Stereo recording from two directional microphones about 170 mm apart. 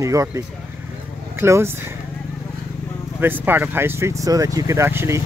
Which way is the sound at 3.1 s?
10° right (ahead or behind).